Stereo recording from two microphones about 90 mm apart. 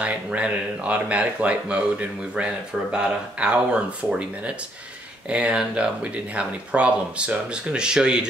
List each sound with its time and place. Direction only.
0.0 s speech: 15° right (ahead or behind)